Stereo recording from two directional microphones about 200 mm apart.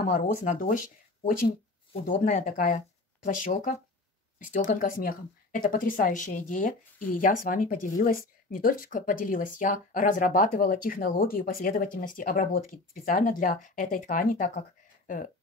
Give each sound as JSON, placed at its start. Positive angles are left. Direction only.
{"t": 0.0, "sound": "speech", "side_deg": 40}